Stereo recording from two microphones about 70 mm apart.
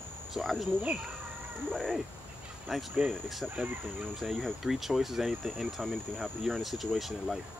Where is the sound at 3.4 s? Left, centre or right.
Right.